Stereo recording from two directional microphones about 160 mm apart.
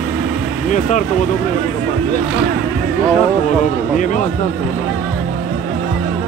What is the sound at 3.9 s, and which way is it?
Speech, 50° left (ahead or behind).